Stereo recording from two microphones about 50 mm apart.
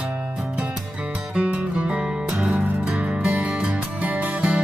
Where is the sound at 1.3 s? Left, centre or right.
Right.